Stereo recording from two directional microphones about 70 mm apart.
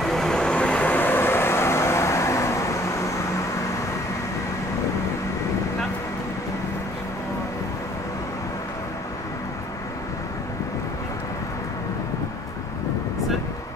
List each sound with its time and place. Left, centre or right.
0.0 s vehicle: centre; by 3.4 s left